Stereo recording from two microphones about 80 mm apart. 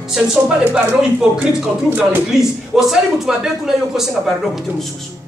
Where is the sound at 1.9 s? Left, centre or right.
Centre.